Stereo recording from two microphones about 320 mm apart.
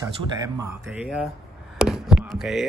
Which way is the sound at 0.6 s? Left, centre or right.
Centre.